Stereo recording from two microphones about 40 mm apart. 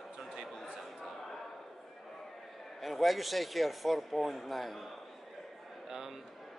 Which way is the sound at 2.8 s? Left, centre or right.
Centre.